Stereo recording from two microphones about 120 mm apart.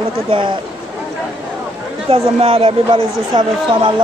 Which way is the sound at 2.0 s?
50° right (ahead or behind).